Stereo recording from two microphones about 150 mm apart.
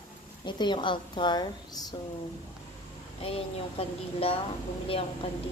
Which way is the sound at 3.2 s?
40° left (ahead or behind).